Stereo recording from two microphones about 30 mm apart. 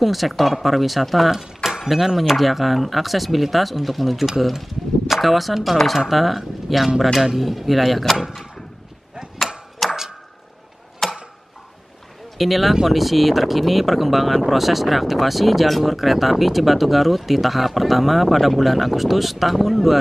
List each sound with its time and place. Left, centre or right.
0.0 s speech: centre
1.3 s a sound: centre
1.9 s speech: centre
9.8 s tick-tock: centre
11.0 s tick-tock: centre
12.4 s speech: centre